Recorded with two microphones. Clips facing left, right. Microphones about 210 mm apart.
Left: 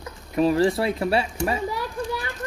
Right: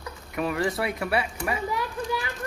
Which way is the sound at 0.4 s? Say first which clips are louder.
Left 7 dB; 30° left (ahead or behind).